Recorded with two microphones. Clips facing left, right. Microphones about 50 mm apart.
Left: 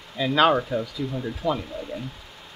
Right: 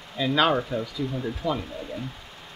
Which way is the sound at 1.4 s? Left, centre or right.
Centre.